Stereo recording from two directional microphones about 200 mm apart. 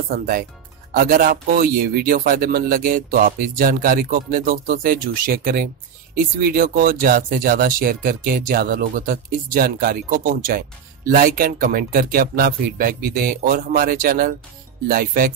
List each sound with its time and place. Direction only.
0.1 s speech: 45° right (ahead or behind)